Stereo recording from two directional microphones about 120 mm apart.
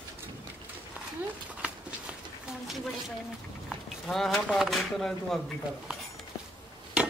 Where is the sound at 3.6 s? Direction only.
5° left (ahead or behind).